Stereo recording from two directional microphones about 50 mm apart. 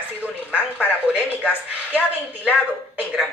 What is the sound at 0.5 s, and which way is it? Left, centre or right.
A woman's voice, right.